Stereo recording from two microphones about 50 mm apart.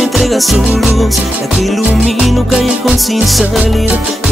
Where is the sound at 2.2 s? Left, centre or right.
Centre.